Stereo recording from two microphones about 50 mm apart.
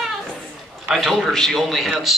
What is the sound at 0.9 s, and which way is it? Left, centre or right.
A woman's voice, centre.